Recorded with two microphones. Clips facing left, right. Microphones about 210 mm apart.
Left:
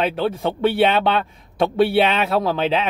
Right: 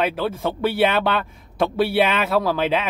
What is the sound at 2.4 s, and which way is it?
Speech, 30° left (ahead or behind).